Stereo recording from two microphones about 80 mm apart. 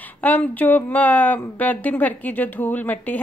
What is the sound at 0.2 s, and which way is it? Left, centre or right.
Speech, centre.